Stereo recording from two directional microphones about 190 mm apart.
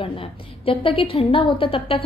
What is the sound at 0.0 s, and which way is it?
A woman's voice, 30° left (ahead or behind).